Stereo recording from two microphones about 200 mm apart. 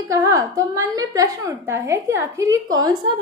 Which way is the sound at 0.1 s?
15° right (ahead or behind).